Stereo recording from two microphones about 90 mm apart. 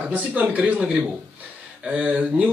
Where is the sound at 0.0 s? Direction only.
15° right (ahead or behind).